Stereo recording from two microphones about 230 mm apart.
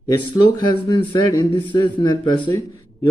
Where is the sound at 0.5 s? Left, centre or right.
Centre.